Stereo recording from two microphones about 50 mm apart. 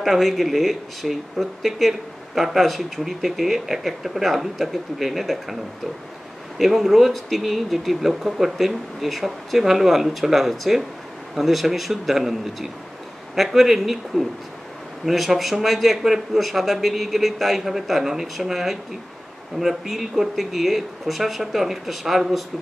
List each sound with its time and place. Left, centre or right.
0.0 s speech: centre
6.6 s speech: centre